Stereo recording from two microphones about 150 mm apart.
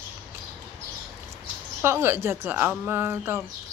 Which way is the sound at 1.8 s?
15° right (ahead or behind).